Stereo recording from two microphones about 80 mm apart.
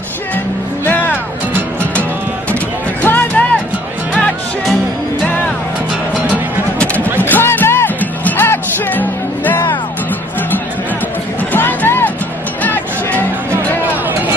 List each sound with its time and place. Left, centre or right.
0.8 s music: left
3.0 s music: left
6.8 s a sound: centre
7.2 s music: left
11.5 s vehicle: left
12.6 s music: left